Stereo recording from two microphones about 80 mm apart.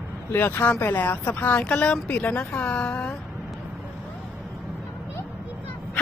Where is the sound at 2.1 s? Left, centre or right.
Left.